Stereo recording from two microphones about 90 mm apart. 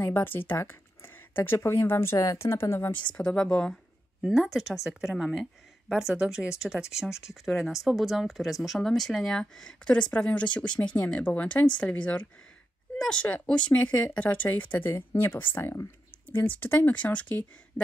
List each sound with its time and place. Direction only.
0.0 s speech: 25° left (ahead or behind)
3.0 s speech: 10° left (ahead or behind)
17.8 s a sound: 25° left (ahead or behind)